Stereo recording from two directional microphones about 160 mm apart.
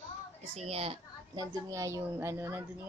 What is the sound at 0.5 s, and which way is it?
Speech, 40° right (ahead or behind).